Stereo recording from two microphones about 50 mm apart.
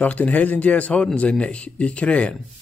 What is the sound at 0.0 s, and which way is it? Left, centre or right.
Speech, left.